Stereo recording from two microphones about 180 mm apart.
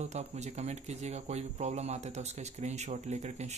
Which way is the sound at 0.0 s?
40° right (ahead or behind).